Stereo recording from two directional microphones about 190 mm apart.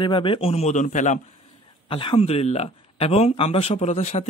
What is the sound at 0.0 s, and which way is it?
Speech, 25° left (ahead or behind).